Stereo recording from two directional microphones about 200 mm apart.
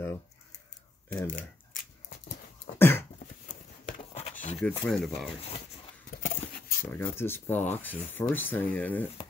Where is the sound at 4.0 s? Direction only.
30° left (ahead or behind).